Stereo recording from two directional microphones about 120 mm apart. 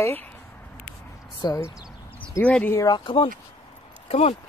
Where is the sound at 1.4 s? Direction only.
30° left (ahead or behind).